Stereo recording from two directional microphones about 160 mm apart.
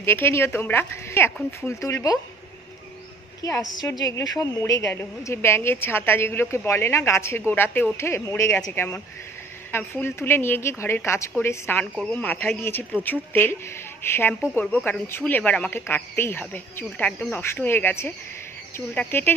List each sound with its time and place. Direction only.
0.0 s a woman's voice: 15° left (ahead or behind)
3.4 s a woman's voice: 20° left (ahead or behind)